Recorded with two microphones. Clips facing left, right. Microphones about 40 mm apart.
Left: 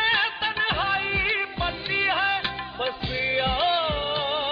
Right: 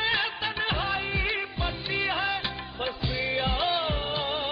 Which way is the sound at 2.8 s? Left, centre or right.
Left.